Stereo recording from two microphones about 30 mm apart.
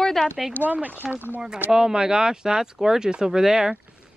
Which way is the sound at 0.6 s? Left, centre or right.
Right.